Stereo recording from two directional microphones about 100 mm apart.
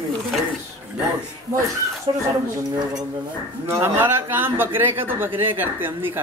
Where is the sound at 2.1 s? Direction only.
60° right (ahead or behind).